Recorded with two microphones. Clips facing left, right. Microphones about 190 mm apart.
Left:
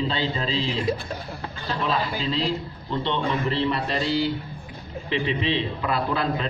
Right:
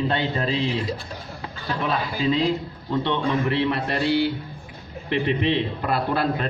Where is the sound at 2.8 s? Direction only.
60° right (ahead or behind).